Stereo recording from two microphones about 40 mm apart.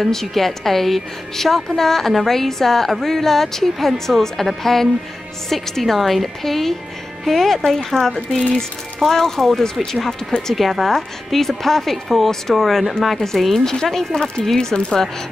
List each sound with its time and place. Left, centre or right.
0.0 s a woman's voice: centre
14.7 s speech: left